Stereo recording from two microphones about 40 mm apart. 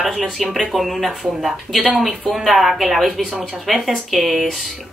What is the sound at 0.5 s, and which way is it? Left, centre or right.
Speech, centre.